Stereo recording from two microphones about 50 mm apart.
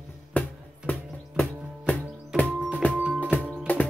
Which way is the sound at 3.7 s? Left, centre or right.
Left.